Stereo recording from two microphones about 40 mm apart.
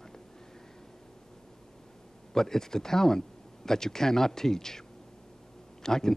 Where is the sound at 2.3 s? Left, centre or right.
Centre.